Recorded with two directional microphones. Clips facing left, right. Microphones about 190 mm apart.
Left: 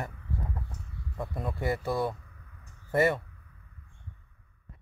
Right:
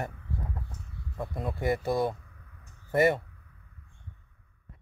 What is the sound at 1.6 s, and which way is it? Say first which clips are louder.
Speech: right 2 dB; 15° right (ahead or behind).